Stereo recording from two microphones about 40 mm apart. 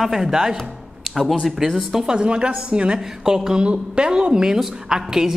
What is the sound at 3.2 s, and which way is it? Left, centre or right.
A woman's voice, centre.